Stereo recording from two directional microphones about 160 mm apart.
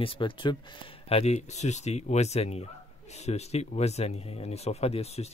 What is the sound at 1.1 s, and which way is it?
Speech, 40° left (ahead or behind).